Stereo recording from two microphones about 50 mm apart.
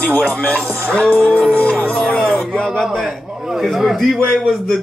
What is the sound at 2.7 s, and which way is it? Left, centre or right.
A man's voice, centre.